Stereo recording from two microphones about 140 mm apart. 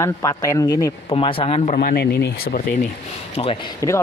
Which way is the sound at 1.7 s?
90° left.